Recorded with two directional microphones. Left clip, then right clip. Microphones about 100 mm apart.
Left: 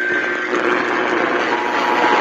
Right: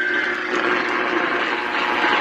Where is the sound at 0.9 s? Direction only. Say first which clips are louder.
Left 3 dB; 40° left (ahead or behind).